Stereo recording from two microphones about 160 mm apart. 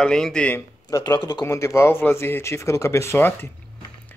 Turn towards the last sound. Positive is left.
turn(degrees=15)  # may be behind; listen again after turning